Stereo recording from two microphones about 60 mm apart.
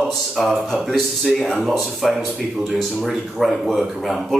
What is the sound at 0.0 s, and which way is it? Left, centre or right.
Speech, centre.